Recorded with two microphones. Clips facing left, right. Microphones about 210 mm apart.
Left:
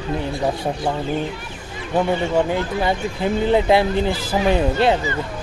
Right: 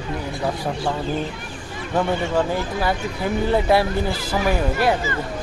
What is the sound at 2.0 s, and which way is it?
Speech, 15° left (ahead or behind).